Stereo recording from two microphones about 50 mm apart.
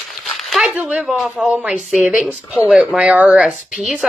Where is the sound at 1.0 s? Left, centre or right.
Centre.